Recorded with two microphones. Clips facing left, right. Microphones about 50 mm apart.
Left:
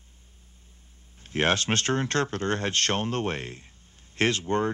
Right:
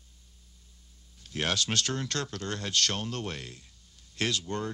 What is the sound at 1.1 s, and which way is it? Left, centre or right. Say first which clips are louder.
Speech: left 7 dB; left.